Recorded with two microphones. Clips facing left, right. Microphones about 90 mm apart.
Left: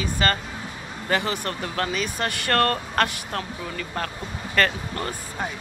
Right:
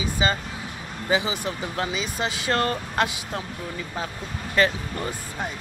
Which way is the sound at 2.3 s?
65° left (ahead or behind).